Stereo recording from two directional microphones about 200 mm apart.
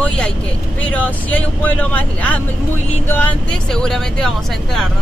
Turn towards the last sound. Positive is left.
turn(degrees=0)  # may be behind; listen again after turning